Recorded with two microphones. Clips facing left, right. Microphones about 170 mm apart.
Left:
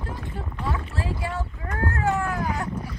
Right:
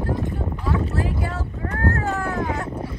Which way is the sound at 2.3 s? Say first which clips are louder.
Right 2 dB; 25° right (ahead or behind).